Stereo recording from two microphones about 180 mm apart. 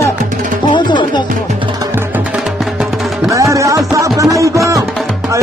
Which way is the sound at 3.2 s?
15° right (ahead or behind).